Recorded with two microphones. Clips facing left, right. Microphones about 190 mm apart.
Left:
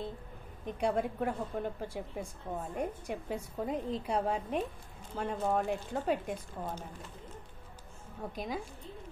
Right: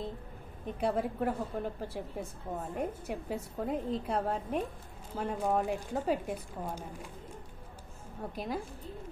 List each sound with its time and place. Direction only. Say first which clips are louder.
0.7 s a woman's voice: even; 5° right (ahead or behind)
8.2 s a woman's voice: even; 10° right (ahead or behind)